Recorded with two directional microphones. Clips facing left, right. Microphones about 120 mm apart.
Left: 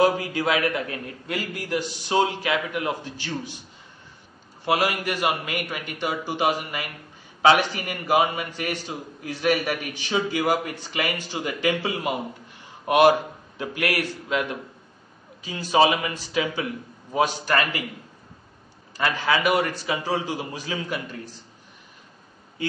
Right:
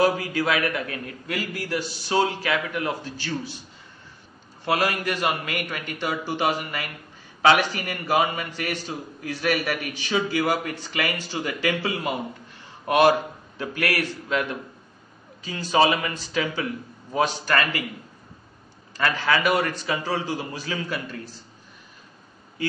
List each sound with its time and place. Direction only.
0.0 s a man's voice: 25° left (ahead or behind)
4.6 s a man's voice: 15° left (ahead or behind)
15.4 s a man's voice: 15° left (ahead or behind)
18.9 s a man's voice: 15° left (ahead or behind)